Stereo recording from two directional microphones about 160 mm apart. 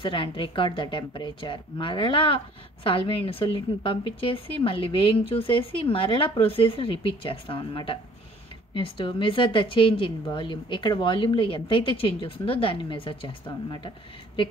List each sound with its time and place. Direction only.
0.0 s a woman's voice: 30° left (ahead or behind)